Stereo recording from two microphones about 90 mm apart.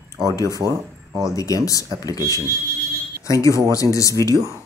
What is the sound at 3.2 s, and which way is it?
Speech, 35° left (ahead or behind).